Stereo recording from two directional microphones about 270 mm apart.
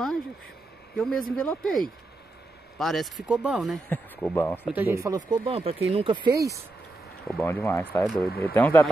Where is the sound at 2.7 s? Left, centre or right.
Centre.